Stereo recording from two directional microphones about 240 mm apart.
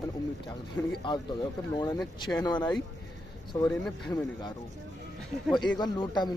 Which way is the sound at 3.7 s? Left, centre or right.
Centre.